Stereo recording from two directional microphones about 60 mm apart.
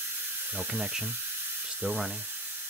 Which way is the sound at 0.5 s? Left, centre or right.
Right.